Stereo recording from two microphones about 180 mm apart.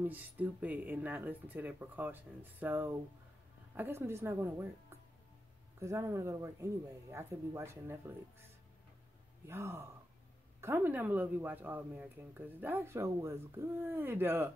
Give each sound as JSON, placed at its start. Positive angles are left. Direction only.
{"t": 0.0, "sound": "speech", "side_deg": -10}
{"t": 9.5, "sound": "speech", "side_deg": -15}